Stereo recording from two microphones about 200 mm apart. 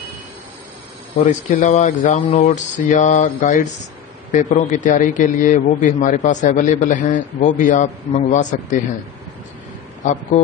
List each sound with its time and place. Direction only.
1.2 s a man's voice: 35° left (ahead or behind)